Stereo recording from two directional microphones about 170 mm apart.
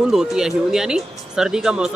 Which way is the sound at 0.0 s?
5° right (ahead or behind).